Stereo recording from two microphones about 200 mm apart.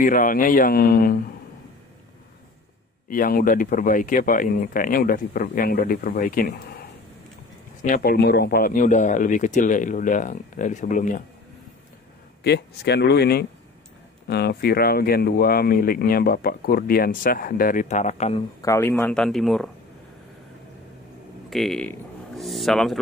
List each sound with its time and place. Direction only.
0.0 s speech: 45° left (ahead or behind)
3.1 s speech: 45° left (ahead or behind)
12.4 s speech: 55° left (ahead or behind); by 18.4 s 35° left (ahead or behind)
18.6 s speech: 15° left (ahead or behind)
21.5 s speech: centre (ahead or behind)